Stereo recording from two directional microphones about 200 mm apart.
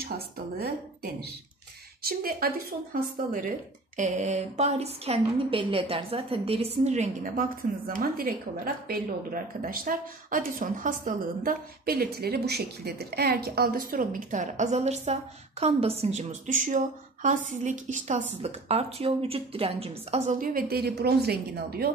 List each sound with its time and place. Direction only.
0.6 s speech: 50° right (ahead or behind)
3.9 s a woman's voice: 35° right (ahead or behind)